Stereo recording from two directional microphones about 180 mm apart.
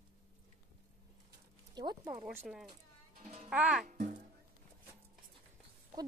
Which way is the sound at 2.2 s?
5° right (ahead or behind).